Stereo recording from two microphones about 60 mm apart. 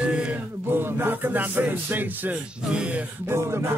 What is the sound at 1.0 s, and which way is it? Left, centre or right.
Music, right.